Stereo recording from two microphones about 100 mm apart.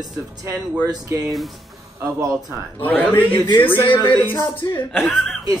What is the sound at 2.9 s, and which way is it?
A man's voice, 15° left (ahead or behind).